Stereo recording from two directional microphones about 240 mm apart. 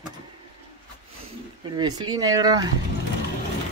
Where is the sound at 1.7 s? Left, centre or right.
Centre.